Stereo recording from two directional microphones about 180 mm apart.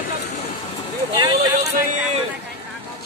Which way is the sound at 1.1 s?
25° right (ahead or behind).